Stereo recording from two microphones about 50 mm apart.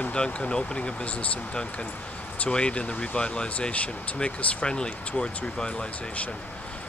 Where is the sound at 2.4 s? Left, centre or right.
Centre.